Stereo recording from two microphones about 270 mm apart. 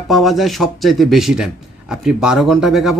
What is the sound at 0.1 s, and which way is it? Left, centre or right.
Speech, centre.